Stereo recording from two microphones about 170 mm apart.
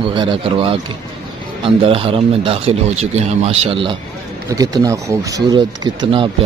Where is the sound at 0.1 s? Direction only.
30° right (ahead or behind).